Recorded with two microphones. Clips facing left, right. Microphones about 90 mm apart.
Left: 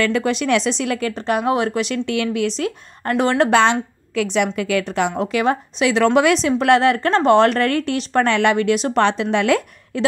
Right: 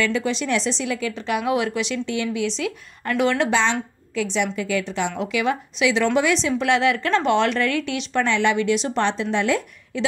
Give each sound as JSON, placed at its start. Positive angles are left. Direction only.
{"t": 0.0, "sound": "speech", "side_deg": 55}
{"t": 1.1, "sound": "speech", "side_deg": 45}
{"t": 2.0, "sound": "speech", "side_deg": 65}
{"t": 3.4, "sound": "speech", "side_deg": 60}
{"t": 5.3, "sound": "speech", "side_deg": 45}
{"t": 9.9, "sound": "speech", "side_deg": 50}